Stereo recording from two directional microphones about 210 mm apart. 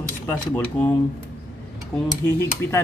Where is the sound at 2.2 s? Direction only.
15° left (ahead or behind).